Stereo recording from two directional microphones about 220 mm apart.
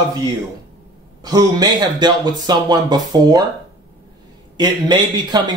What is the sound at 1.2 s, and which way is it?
Speech, 15° right (ahead or behind).